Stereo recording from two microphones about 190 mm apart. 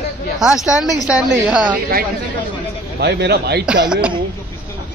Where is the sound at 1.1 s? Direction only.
5° right (ahead or behind).